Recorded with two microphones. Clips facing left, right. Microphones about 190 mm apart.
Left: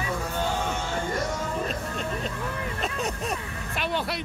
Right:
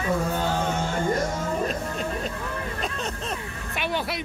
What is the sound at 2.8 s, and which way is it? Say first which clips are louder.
Speech: left 1 dB; 10° left (ahead or behind).